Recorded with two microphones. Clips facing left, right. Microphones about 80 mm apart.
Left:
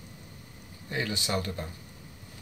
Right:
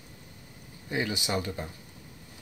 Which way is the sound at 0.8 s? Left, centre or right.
Centre.